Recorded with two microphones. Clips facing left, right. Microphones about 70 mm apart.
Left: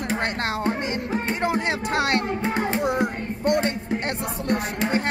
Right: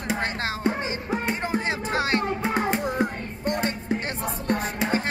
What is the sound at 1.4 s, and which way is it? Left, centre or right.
Music, left.